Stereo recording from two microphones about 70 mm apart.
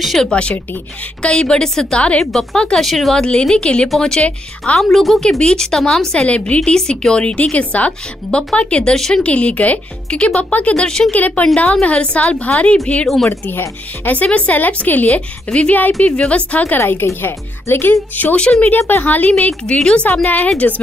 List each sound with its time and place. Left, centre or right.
0.0 s a woman's voice: centre
0.3 s speech: centre
4.9 s a woman's voice: centre
11.1 s speech: left
13.0 s a woman's voice: centre
13.3 s speech: left
18.4 s speech: centre
18.7 s speech: left
19.6 s speech: centre